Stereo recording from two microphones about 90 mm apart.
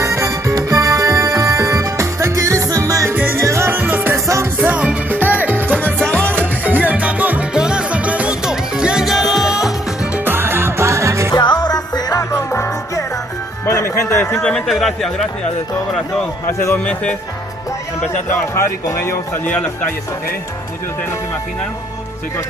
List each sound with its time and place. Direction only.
0.0 s music: 35° right (ahead or behind)
3.1 s music: 25° right (ahead or behind)
4.6 s music: 15° right (ahead or behind)
5.9 s music: 10° left (ahead or behind)
6.4 s music: 20° right (ahead or behind)
10.1 s music: 25° right (ahead or behind)
11.3 s music: 50° left (ahead or behind); by 14.4 s 25° left (ahead or behind)
14.7 s speech: centre (ahead or behind)
16.4 s a man's voice: 25° left (ahead or behind)
16.7 s speech: 15° left (ahead or behind)
18.5 s speech: 30° left (ahead or behind)
19.4 s speech: 15° left (ahead or behind)